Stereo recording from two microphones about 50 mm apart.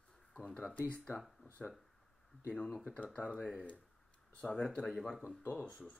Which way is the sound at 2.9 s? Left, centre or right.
Left.